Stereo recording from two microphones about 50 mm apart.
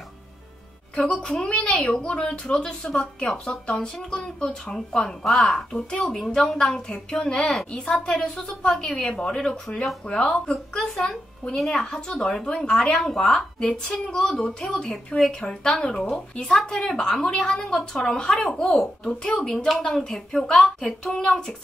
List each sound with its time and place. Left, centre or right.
1.9 s a woman's voice: centre
8.1 s a woman's voice: centre
10.3 s a woman's voice: centre